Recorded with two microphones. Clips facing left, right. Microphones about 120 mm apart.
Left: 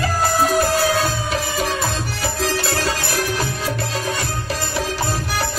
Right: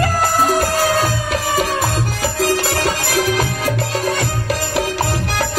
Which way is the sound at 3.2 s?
90° right.